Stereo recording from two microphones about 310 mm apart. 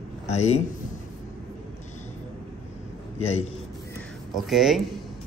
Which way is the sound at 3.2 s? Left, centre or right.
Left.